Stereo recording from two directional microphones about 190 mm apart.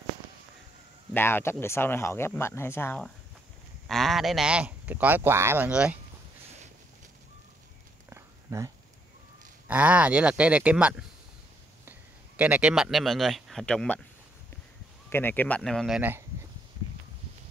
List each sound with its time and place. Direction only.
1.1 s speech: 10° left (ahead or behind); by 5.9 s 5° right (ahead or behind)
8.1 s a sound: 15° right (ahead or behind)
9.7 s a man's voice: 10° right (ahead or behind)
15.0 s speech: 10° left (ahead or behind)
16.0 s speech: 10° right (ahead or behind)